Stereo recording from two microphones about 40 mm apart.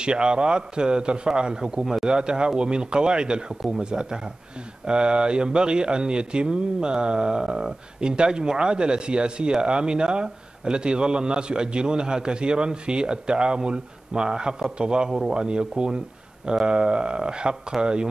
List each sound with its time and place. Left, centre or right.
0.0 s speech: right
16.6 s speech: right